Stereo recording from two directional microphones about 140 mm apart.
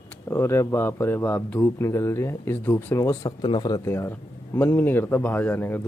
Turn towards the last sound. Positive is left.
turn(degrees=15)  # may be behind; listen again after turning